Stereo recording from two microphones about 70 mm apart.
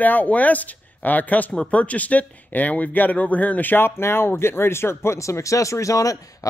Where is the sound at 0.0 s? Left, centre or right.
Left.